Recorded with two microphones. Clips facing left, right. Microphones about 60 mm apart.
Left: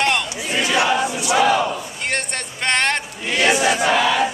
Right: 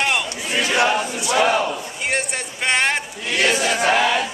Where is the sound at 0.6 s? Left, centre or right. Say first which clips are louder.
Even; right.